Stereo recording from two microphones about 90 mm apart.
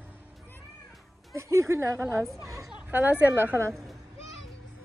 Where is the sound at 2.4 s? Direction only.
35° right (ahead or behind).